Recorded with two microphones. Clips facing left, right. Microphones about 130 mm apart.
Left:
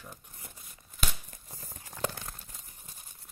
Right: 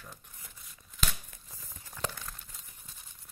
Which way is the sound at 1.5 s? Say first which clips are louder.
Left 6 dB; 35° left (ahead or behind).